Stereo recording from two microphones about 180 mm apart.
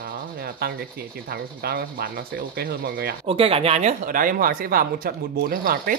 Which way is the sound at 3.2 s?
30° right (ahead or behind).